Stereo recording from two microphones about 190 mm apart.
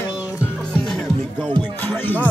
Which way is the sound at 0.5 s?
5° left (ahead or behind).